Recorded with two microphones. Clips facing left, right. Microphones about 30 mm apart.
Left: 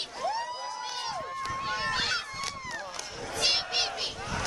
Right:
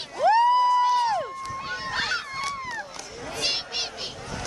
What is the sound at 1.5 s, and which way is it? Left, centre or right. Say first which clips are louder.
Run: left 1 dB; centre.